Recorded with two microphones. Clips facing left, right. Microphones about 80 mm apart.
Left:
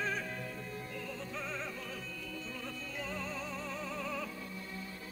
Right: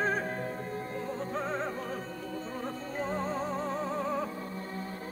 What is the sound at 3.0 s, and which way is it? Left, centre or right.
Music, right.